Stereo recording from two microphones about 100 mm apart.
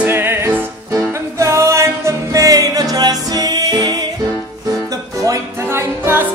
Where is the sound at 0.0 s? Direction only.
20° right (ahead or behind); by 4.0 s 45° right (ahead or behind).